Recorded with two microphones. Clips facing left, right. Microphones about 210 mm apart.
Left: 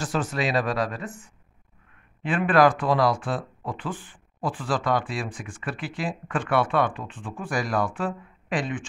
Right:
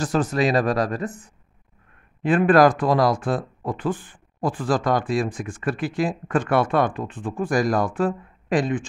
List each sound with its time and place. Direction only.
0.0 s speech: 40° right (ahead or behind)